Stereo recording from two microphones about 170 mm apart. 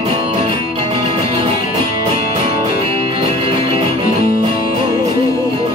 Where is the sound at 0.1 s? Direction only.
35° right (ahead or behind).